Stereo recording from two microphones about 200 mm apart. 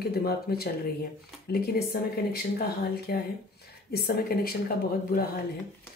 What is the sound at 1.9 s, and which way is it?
Speech, 50° left (ahead or behind).